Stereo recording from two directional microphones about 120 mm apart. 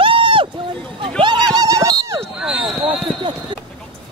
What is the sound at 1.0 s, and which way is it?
Speech, 40° right (ahead or behind).